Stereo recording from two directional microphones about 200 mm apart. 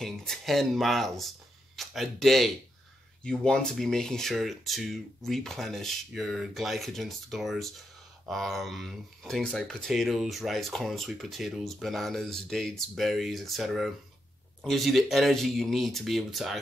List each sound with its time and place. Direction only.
0.0 s speech: centre (ahead or behind)